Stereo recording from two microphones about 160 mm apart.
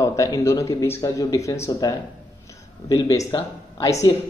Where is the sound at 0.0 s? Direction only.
20° left (ahead or behind).